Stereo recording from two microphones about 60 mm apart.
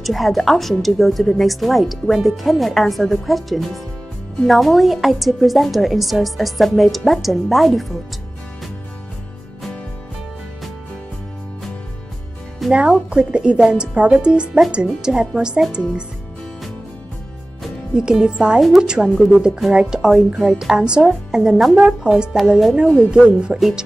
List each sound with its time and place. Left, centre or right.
0.0 s a woman's voice: centre
12.6 s music: centre
13.1 s speech: centre
17.9 s a woman's voice: centre
22.5 s a woman's voice: centre
22.9 s speech: centre